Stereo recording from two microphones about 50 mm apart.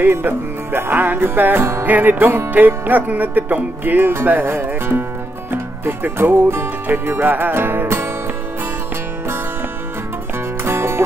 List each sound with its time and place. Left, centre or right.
0.0 s music: right
10.6 s music: right